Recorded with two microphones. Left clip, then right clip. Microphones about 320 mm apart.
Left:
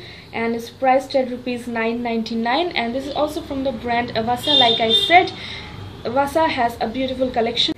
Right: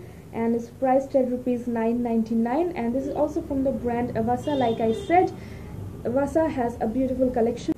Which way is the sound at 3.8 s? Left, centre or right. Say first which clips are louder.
Left 5 dB; centre.